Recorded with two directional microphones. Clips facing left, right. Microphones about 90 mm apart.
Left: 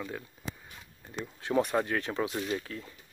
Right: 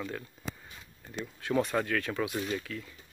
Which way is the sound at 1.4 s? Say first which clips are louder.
Left 1 dB; 20° left (ahead or behind).